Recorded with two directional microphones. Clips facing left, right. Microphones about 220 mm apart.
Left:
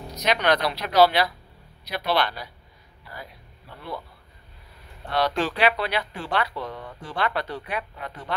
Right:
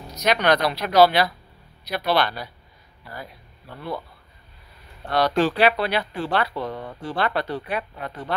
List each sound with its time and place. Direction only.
0.2 s speech: 45° right (ahead or behind)
5.1 s speech: 40° right (ahead or behind)